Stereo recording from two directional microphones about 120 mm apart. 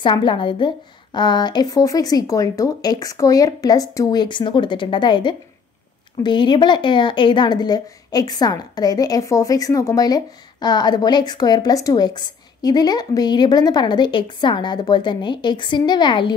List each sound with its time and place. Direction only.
0.0 s speech: 45° left (ahead or behind)